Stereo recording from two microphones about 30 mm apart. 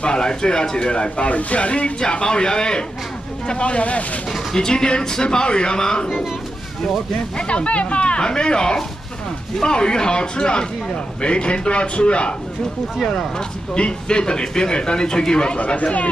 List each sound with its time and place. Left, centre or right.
0.0 s speech: left
1.3 s speech: left
2.0 s speech: left
3.4 s a man's voice: left
4.6 s speech: left
7.3 s a man's voice: left
8.2 s a man's voice: left
13.0 s speech: centre
13.7 s a man's voice: left
15.6 s speech: left